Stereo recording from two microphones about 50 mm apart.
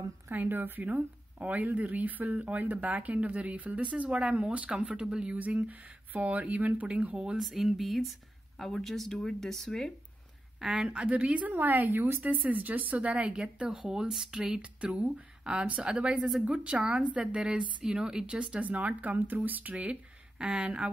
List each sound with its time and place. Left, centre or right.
0.3 s speech: right
1.4 s speech: right; by 5.3 s centre
5.3 s speech: right
7.3 s speech: centre
10.6 s speech: centre; by 12.2 s right
12.2 s speech: right
18.6 s speech: right